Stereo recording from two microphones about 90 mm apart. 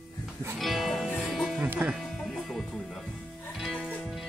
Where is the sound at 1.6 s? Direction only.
20° right (ahead or behind).